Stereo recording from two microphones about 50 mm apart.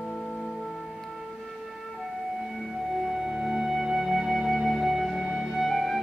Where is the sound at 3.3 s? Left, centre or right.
Centre.